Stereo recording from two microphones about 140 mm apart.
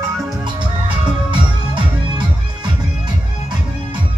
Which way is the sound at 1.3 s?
35° right (ahead or behind).